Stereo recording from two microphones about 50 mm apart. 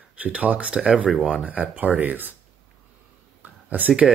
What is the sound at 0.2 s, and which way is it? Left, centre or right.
Speech, right.